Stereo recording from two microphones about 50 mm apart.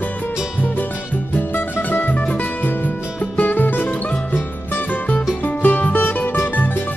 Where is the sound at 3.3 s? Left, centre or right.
Left.